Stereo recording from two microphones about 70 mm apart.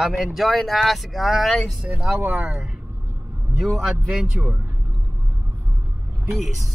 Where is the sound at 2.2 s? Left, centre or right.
Centre.